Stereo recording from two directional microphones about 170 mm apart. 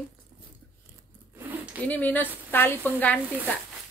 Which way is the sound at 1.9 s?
10° left (ahead or behind).